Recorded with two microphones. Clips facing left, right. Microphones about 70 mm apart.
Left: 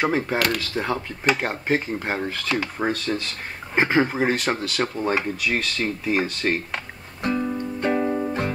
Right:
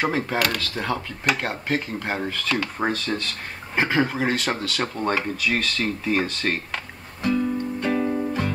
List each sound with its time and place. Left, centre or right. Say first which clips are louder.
0.1 s speech: left 1 dB; centre
1.7 s speech: left 3 dB; centre
2.8 s speech: even; centre
3.7 s speech: left 2 dB; centre
7.2 s music: right 2 dB; left